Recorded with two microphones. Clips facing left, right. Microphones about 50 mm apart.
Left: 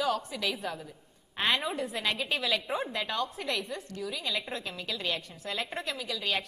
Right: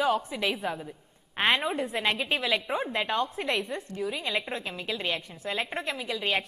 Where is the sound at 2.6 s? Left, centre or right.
Centre.